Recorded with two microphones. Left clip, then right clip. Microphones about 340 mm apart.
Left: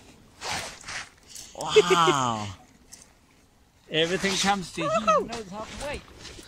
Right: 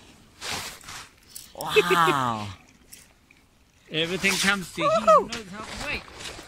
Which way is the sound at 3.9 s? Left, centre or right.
Centre.